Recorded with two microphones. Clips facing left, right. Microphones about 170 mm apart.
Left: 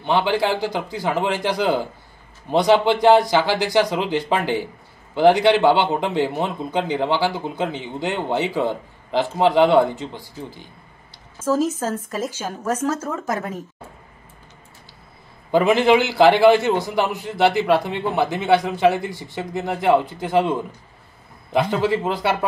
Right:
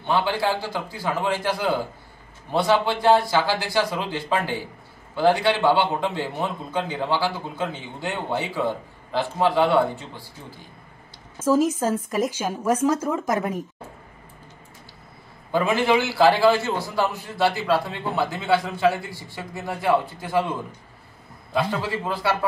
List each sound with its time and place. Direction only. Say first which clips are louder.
0.0 s a man's voice: left 3 dB; 25° left (ahead or behind)
11.3 s a woman's voice: right 1 dB; 10° right (ahead or behind)
15.5 s a man's voice: left 5 dB; 20° left (ahead or behind)
21.5 s a man's voice: left 5 dB; 20° left (ahead or behind)